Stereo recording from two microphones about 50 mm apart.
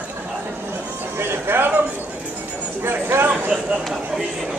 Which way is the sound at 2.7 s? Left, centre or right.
Right.